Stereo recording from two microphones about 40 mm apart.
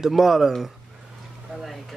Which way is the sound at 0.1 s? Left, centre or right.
Centre.